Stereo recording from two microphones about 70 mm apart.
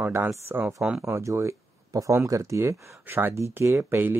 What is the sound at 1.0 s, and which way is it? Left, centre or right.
Speech, right.